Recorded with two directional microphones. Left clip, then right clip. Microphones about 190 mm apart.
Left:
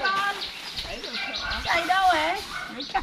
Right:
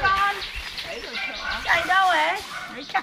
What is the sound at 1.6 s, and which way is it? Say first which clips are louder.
A woman's voice: right 2 dB; 5° right (ahead or behind).